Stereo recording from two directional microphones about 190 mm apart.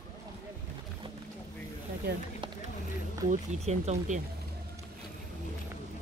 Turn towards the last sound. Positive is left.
turn(degrees=-35)  # may be behind; listen again after turning